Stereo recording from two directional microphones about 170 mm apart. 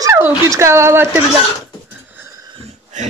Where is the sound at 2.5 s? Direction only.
40° right (ahead or behind).